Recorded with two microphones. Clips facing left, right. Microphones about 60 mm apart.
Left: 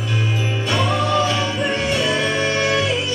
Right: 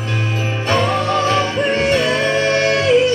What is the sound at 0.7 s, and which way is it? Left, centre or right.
Music, right.